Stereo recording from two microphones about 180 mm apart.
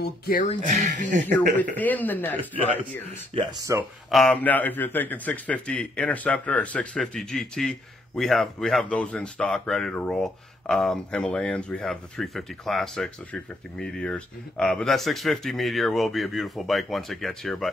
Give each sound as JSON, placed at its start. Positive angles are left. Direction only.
{"t": 0.0, "sound": "speech", "side_deg": 55}
{"t": 0.7, "sound": "speech", "side_deg": -45}
{"t": 1.2, "sound": "a man's voice", "side_deg": 10}
{"t": 3.3, "sound": "speech", "side_deg": -20}
{"t": 4.1, "sound": "a man's voice", "side_deg": 5}